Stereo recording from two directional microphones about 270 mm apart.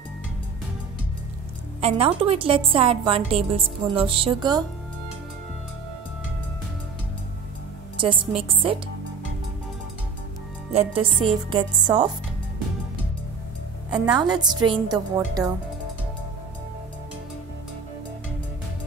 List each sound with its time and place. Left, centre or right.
1.8 s a woman's voice: right
8.0 s a woman's voice: centre
10.7 s a woman's voice: right
13.8 s a woman's voice: centre
14.2 s a woman's voice: centre